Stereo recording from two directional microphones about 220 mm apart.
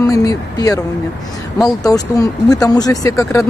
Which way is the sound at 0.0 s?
15° left (ahead or behind).